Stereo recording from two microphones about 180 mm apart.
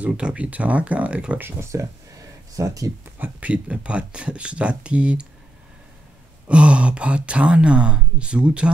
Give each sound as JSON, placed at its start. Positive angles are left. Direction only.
{"t": 0.0, "sound": "speech", "side_deg": -5}
{"t": 3.3, "sound": "speech", "side_deg": -5}
{"t": 6.4, "sound": "speech", "side_deg": -5}